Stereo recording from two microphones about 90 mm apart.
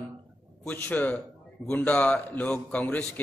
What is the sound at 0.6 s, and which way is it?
A man's voice, 15° left (ahead or behind).